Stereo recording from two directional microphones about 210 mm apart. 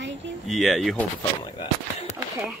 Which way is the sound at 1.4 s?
25° left (ahead or behind).